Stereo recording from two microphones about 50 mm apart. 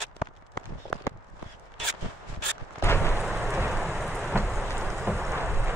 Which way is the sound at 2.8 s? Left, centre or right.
Left.